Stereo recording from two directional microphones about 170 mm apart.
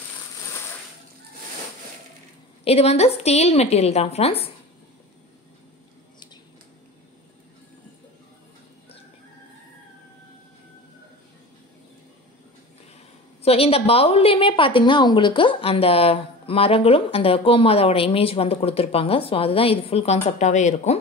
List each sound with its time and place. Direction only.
2.6 s a woman's voice: 35° left (ahead or behind)
13.4 s a woman's voice: 35° left (ahead or behind)